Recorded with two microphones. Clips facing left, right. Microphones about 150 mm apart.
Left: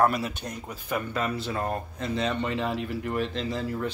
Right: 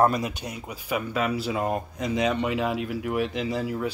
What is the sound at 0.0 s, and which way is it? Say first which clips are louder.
Speech: right 2 dB; 20° right (ahead or behind).